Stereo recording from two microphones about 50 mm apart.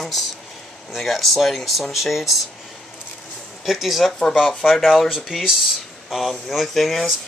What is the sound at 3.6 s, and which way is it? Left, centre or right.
Speech, centre.